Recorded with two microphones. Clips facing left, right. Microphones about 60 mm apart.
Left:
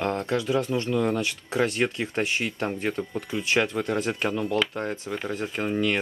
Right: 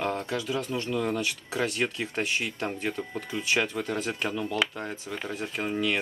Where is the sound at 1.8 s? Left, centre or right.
Centre.